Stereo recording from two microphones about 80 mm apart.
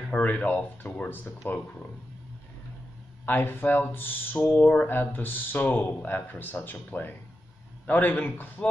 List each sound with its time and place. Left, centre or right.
0.1 s speech: centre
3.3 s speech: left